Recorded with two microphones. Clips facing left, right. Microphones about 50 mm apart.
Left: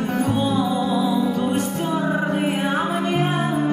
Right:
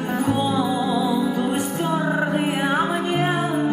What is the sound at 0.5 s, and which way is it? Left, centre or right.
Music, centre.